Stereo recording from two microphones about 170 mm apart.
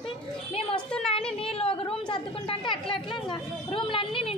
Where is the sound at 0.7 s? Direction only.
5° left (ahead or behind).